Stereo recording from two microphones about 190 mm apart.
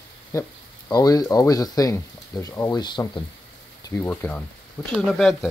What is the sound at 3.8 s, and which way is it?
Speech, 10° left (ahead or behind).